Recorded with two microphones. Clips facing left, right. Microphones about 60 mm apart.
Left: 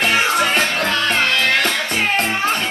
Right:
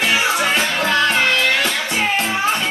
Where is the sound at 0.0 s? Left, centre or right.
Left.